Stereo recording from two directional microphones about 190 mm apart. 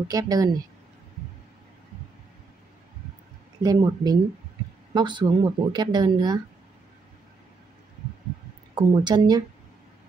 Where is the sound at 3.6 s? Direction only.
20° right (ahead or behind).